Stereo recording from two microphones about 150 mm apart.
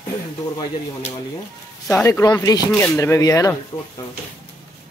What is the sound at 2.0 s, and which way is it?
Speech, 20° left (ahead or behind).